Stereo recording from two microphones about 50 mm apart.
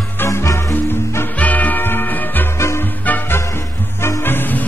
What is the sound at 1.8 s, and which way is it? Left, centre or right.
Music, left.